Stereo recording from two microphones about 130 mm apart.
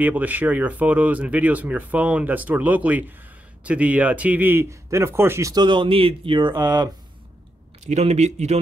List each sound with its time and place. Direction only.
0.0 s speech: 15° right (ahead or behind)
5.5 s speech: 35° right (ahead or behind)
7.8 s speech: 60° right (ahead or behind)